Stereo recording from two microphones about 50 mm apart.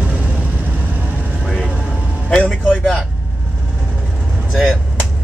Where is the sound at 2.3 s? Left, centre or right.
Left.